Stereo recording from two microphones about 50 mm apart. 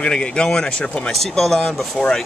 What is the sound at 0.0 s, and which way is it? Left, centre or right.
Speech, centre.